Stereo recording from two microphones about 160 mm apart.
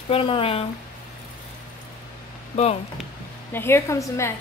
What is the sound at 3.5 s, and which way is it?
Speech, 15° left (ahead or behind).